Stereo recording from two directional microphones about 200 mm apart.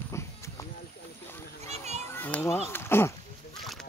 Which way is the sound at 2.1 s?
10° left (ahead or behind).